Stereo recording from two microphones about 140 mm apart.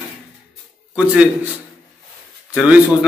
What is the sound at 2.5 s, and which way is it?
Speech, 5° right (ahead or behind).